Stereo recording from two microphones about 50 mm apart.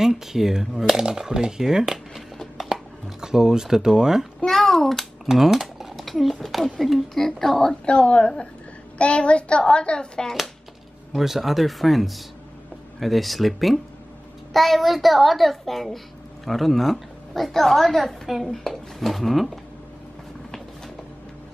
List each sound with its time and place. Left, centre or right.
0.0 s speech: centre
2.5 s a sound: centre
4.5 s a child's voice: centre
7.8 s a child's voice: left
11.1 s a child's voice: centre